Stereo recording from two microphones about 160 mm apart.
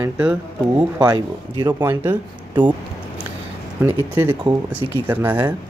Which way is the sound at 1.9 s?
15° right (ahead or behind).